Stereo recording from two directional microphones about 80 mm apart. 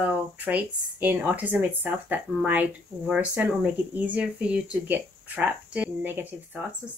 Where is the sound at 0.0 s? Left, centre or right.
Centre.